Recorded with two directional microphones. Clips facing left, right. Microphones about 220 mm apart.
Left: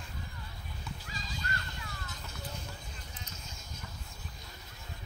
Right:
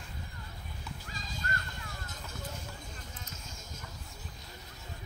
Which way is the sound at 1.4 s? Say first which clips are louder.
Right 1 dB; 50° right (ahead or behind).